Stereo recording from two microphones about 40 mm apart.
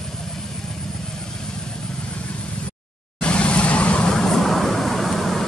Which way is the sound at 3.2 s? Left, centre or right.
Left.